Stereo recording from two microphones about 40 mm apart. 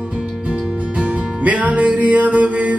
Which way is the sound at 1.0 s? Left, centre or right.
Right.